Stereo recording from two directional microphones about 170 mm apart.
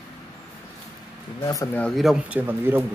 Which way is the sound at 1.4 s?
20° left (ahead or behind).